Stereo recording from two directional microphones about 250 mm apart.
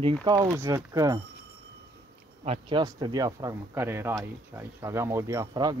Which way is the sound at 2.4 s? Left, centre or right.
Right.